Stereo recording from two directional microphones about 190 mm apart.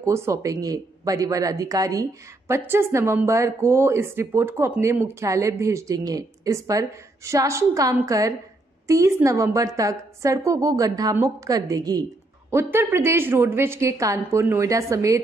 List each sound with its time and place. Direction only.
0.0 s speech: 15° right (ahead or behind)